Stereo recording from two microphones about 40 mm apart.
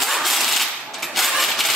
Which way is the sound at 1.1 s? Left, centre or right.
Centre.